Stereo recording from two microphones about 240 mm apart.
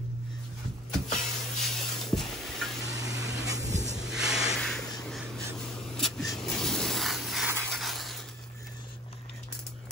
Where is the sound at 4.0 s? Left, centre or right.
Centre.